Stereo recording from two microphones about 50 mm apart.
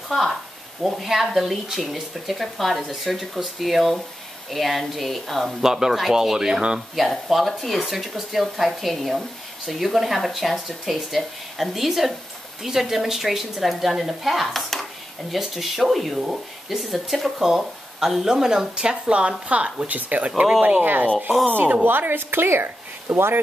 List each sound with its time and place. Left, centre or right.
0.1 s speech: centre
5.6 s speech: centre
7.0 s speech: centre; by 20.4 s right
20.6 s speech: right